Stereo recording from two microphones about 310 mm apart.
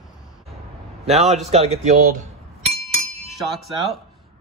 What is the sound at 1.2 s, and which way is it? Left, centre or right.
A man's voice, centre.